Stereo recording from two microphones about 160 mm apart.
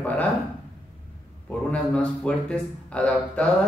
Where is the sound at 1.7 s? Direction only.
5° left (ahead or behind).